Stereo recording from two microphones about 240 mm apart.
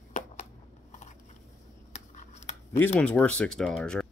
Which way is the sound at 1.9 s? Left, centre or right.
Left.